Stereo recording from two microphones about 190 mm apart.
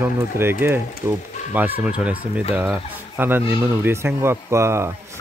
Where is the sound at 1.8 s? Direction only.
5° right (ahead or behind).